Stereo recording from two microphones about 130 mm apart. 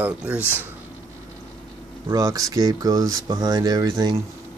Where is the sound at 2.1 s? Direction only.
25° right (ahead or behind).